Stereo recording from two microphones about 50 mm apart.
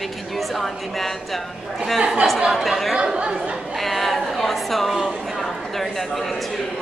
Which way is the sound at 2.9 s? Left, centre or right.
Centre.